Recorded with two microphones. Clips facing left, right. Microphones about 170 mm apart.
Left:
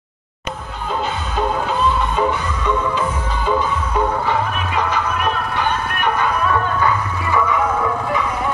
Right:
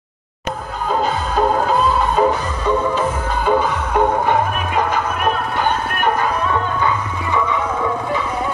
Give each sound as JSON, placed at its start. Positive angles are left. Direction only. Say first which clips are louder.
{"t": 0.8, "sound": "music", "louder": "right 4 dB", "side_deg": -40}
{"t": 6.4, "sound": "music", "louder": "left 1 dB", "side_deg": -20}